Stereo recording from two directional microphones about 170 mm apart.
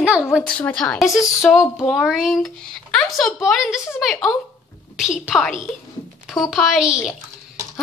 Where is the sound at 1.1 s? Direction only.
20° left (ahead or behind).